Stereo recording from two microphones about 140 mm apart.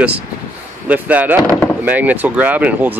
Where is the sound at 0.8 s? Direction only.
10° right (ahead or behind).